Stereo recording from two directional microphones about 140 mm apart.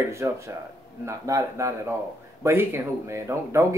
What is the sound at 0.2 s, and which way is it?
A man's voice, 15° right (ahead or behind).